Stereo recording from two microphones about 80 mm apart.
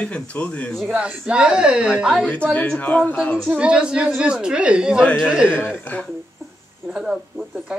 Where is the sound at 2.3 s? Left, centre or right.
Centre.